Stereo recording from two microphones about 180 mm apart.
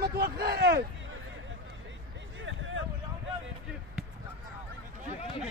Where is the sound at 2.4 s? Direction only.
90° right.